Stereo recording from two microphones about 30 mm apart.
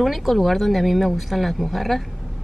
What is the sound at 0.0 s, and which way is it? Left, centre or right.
Speech, centre.